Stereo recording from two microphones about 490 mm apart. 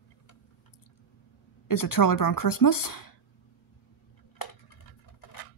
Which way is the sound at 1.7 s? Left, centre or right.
Left.